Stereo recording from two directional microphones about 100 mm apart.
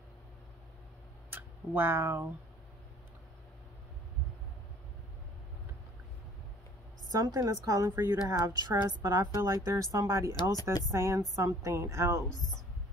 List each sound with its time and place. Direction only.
1.3 s a sound: 20° right (ahead or behind)
7.1 s a woman's voice: 35° right (ahead or behind)
8.6 s a woman's voice: 40° right (ahead or behind)
12.3 s speech: centre (ahead or behind)